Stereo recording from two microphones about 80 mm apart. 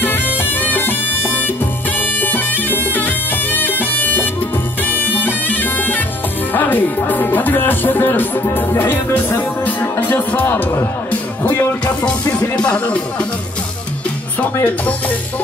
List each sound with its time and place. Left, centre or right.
0.4 s music: left
6.5 s speech: left
11.1 s music: left
12.0 s speech: centre
14.4 s speech: centre